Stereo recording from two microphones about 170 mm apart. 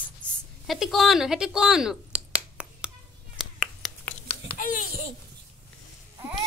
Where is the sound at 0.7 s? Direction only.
Centre (ahead or behind).